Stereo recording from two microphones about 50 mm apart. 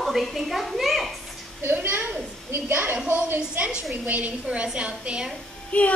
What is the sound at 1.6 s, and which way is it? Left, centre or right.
A woman's voice, right.